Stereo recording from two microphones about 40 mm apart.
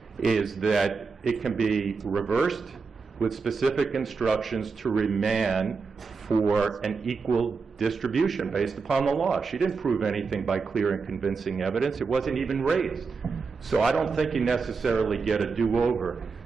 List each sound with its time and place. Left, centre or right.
0.2 s speech: centre